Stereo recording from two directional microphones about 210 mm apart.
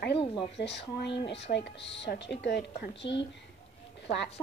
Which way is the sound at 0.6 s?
55° left (ahead or behind).